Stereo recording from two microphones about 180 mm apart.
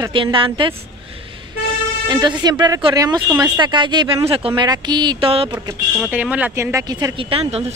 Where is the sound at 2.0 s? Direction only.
25° right (ahead or behind).